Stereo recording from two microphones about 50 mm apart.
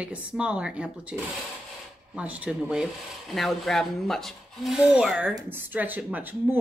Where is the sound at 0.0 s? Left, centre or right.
Right.